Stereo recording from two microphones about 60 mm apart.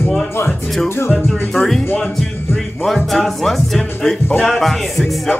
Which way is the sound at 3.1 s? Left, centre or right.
Centre.